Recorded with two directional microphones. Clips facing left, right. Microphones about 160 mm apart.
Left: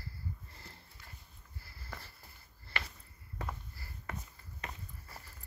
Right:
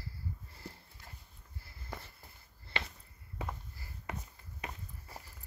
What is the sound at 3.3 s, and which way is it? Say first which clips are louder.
Walk: right 1 dB; 15° right (ahead or behind).